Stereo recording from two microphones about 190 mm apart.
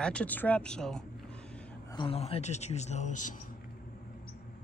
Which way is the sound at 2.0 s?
30° left (ahead or behind).